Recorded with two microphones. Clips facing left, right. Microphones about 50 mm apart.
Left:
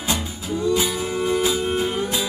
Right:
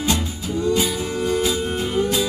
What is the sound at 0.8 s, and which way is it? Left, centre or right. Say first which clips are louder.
Music: right 1 dB; centre.